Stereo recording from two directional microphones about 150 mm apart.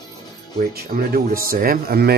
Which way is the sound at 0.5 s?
80° right.